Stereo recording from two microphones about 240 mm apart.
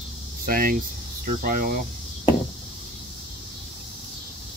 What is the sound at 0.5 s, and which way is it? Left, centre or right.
Speech, right.